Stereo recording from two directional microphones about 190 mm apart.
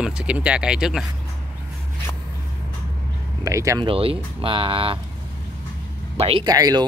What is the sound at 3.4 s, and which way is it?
Speech, 15° right (ahead or behind).